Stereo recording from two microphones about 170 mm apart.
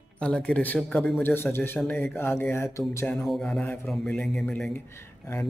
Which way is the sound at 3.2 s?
5° left (ahead or behind).